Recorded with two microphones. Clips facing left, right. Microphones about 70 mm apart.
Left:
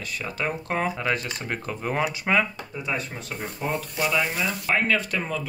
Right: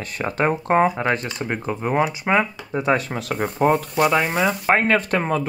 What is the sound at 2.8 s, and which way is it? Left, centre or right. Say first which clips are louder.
Speech: right 10 dB; right.